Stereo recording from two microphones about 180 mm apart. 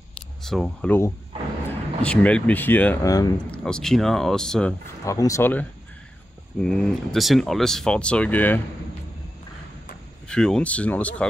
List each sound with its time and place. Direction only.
0.4 s speech: centre (ahead or behind); by 3.3 s 20° left (ahead or behind)
3.5 s speech: 5° left (ahead or behind)
5.0 s speech: 20° left (ahead or behind)
10.2 s speech: 5° left (ahead or behind)